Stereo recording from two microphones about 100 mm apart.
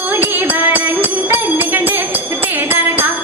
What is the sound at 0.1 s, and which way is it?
Music, 20° right (ahead or behind).